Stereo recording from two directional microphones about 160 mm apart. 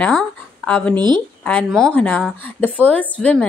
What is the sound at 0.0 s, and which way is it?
Speech, 5° left (ahead or behind).